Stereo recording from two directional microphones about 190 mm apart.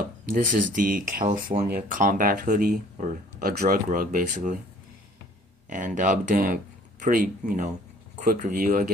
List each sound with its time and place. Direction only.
0.0 s speech: 45° right (ahead or behind)
5.7 s speech: 40° right (ahead or behind)